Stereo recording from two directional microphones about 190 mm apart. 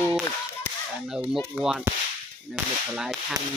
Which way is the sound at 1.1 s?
5° right (ahead or behind).